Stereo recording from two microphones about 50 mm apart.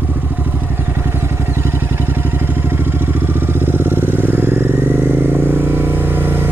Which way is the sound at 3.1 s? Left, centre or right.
Right.